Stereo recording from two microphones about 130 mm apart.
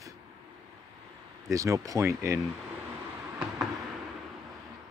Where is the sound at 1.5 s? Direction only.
25° right (ahead or behind).